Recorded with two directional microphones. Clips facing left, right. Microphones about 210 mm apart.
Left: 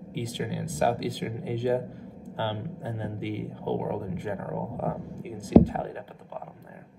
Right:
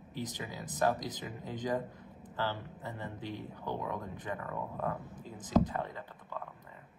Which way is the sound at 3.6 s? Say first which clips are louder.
Left 9 dB; 20° left (ahead or behind).